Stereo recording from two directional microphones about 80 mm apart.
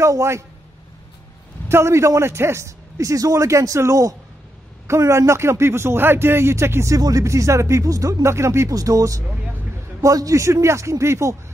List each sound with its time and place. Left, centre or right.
0.0 s a man's voice: right
1.7 s a man's voice: right